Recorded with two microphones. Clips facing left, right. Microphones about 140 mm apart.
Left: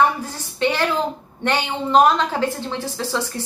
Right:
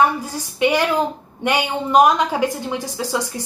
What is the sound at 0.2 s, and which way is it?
A woman's voice, 10° right (ahead or behind).